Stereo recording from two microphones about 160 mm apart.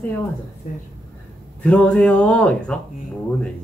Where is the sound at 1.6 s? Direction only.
10° left (ahead or behind).